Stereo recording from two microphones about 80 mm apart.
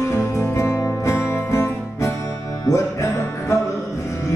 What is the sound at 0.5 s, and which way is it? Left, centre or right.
Music, left.